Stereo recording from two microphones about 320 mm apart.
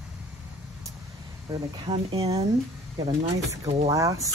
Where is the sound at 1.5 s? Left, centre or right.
Centre.